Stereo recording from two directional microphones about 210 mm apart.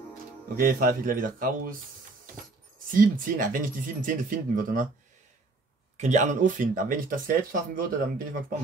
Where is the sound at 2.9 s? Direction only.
40° right (ahead or behind).